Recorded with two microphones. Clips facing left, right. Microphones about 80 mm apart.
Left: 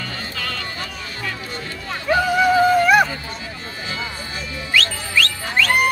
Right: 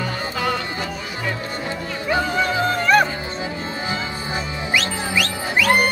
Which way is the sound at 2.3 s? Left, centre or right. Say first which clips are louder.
Left 6 dB; centre.